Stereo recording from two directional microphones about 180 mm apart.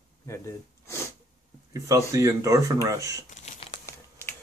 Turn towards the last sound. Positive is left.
turn(degrees=15)  # may be behind; listen again after turning